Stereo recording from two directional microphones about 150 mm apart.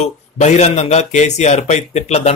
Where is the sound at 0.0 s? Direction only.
50° left (ahead or behind).